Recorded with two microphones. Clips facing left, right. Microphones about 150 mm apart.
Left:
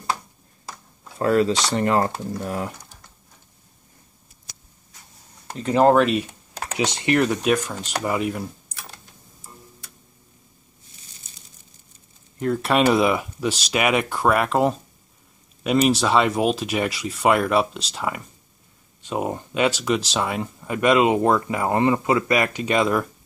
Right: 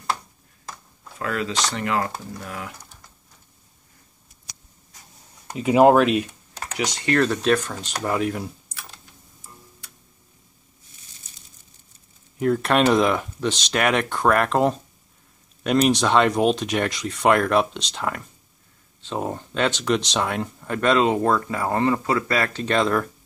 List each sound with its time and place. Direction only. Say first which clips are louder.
1.1 s speech: left 7 dB; 35° left (ahead or behind)
5.5 s speech: right 2 dB; 10° right (ahead or behind)
6.8 s speech: left 1 dB; 25° left (ahead or behind); by 8.5 s 5° left (ahead or behind)
12.4 s speech: right 1 dB; centre (ahead or behind)